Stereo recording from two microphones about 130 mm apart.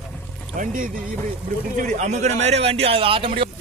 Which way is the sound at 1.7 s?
65° right (ahead or behind).